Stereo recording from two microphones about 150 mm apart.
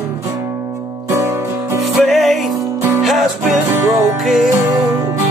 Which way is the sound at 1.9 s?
Centre (ahead or behind).